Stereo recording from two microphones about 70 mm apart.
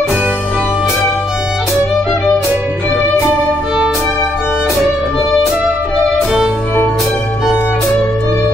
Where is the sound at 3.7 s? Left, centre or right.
Centre.